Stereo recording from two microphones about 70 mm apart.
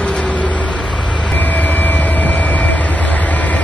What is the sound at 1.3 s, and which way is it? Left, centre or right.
Vehicle, left.